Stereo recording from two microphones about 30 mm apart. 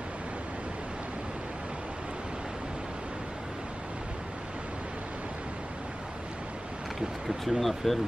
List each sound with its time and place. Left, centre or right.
7.0 s speech: centre